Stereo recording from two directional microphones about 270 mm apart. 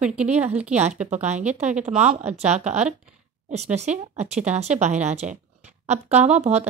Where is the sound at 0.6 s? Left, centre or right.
Right.